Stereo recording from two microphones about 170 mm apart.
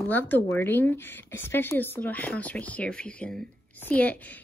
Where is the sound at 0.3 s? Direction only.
15° left (ahead or behind).